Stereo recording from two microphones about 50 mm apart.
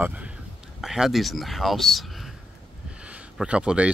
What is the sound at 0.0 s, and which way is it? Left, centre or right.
Speech, right.